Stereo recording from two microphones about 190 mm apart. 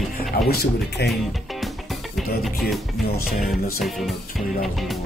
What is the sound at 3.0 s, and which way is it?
Speech, 55° left (ahead or behind).